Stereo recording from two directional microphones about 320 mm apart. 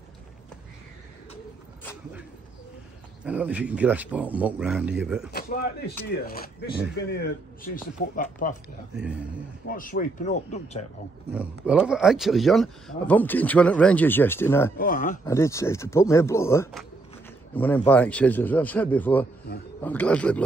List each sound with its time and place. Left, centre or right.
3.3 s speech: centre
5.3 s speech: left
8.9 s speech: centre
9.7 s speech: left
11.3 s speech: centre
14.8 s speech: left
15.2 s speech: centre